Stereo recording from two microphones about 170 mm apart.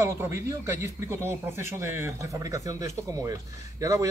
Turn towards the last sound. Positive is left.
turn(degrees=-20)  # may be behind; listen again after turning